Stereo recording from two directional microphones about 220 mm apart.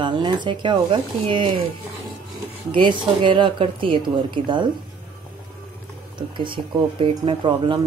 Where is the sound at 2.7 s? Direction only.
20° right (ahead or behind).